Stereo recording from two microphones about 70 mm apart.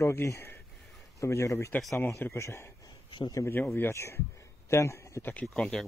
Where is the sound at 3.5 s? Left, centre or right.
Left.